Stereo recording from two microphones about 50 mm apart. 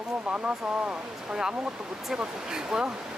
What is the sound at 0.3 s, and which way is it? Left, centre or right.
Speech, centre.